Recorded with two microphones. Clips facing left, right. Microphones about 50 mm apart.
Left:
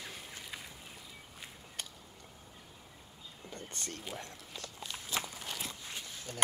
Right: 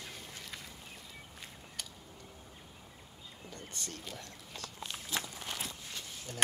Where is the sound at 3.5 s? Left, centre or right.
Left.